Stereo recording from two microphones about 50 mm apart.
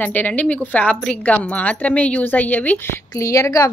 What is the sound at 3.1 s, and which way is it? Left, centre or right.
Speech, left.